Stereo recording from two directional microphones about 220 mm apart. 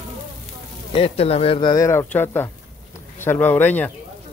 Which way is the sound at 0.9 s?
25° left (ahead or behind).